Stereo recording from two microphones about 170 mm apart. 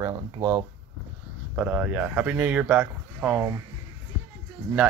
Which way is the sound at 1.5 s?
10° right (ahead or behind).